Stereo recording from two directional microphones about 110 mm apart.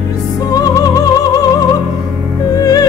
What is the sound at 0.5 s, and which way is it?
Music, 35° left (ahead or behind).